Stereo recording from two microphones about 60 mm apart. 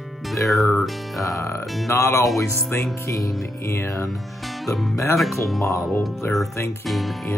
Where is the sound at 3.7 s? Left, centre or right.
Left.